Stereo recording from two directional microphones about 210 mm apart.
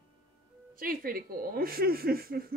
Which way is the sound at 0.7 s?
45° right (ahead or behind).